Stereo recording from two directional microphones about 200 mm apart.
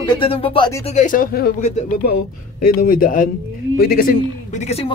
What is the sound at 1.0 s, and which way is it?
Speech, 45° left (ahead or behind).